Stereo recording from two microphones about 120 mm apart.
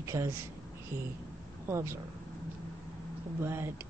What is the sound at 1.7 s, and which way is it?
Speech, 20° right (ahead or behind).